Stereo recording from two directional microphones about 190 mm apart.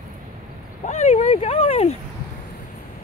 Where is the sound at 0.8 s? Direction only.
35° left (ahead or behind).